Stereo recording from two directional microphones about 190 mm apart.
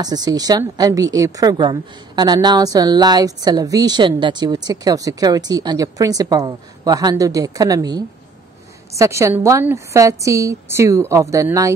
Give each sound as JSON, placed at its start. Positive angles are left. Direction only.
{"t": 0.0, "sound": "a woman's voice", "side_deg": -20}